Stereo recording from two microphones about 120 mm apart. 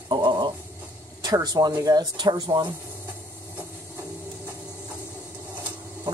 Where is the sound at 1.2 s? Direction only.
35° right (ahead or behind).